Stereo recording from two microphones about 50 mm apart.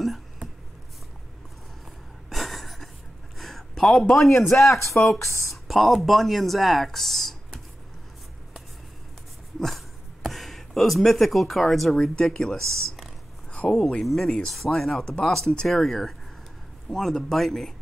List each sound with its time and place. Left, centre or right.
2.2 s a sound: centre
4.1 s speech: centre
4.6 s speech: left
4.9 s speech: centre
9.6 s speech: centre
12.2 s speech: centre
13.6 s speech: centre
14.0 s speech: centre